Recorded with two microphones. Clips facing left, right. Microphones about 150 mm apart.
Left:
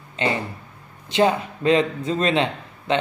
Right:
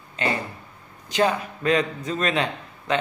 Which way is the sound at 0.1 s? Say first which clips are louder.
Left 2 dB; 25° left (ahead or behind).